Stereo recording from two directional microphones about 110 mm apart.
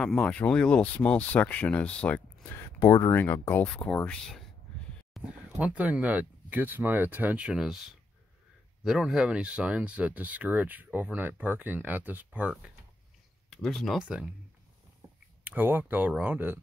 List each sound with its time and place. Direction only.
0.0 s speech: 5° left (ahead or behind)
2.5 s speech: 25° left (ahead or behind)
3.6 s speech: 10° left (ahead or behind)
5.2 s speech: 10° right (ahead or behind)
8.8 s speech: 5° right (ahead or behind)
13.5 s speech: 5° left (ahead or behind)
13.9 s speech: 10° right (ahead or behind)
15.4 s speech: 15° right (ahead or behind)